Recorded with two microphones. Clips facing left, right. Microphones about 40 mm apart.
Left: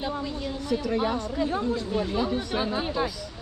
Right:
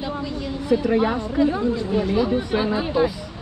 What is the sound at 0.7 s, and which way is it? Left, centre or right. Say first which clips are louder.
Speech: right 7 dB; right.